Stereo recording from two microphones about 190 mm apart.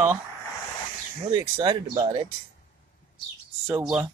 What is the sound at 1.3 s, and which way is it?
Speech, 25° right (ahead or behind).